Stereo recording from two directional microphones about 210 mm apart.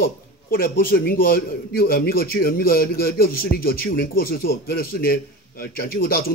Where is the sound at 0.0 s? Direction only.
45° left (ahead or behind).